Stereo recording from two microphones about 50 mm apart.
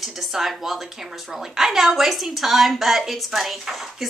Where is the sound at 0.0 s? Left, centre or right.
Centre.